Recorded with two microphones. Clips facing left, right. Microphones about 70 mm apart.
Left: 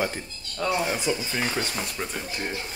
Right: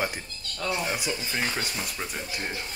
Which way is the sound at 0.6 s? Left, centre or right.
Centre.